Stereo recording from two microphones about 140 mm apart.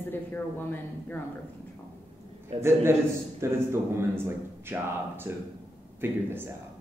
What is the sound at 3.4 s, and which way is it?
Speech, 20° right (ahead or behind).